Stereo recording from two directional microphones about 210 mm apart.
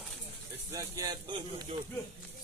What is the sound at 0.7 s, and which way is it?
Speech, 20° right (ahead or behind).